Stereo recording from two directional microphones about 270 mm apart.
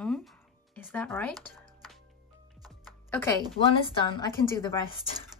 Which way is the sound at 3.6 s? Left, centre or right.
Centre.